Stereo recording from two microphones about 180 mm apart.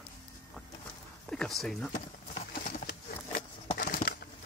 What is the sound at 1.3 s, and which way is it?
Speech, centre (ahead or behind).